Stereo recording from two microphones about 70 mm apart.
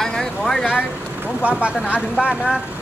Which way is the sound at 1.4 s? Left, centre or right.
Centre.